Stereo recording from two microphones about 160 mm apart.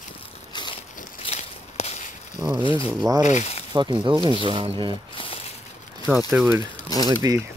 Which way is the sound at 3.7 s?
30° right (ahead or behind).